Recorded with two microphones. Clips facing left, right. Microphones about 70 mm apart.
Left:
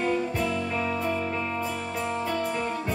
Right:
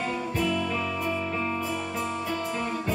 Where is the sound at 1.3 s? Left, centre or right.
Centre.